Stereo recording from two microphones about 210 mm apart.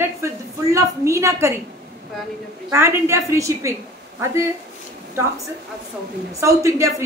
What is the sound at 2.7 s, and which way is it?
A woman's voice, 10° right (ahead or behind).